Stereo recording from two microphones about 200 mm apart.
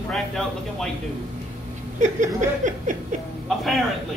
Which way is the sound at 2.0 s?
40° right (ahead or behind).